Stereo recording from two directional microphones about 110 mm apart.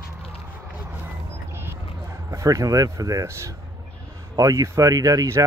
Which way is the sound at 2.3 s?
30° right (ahead or behind).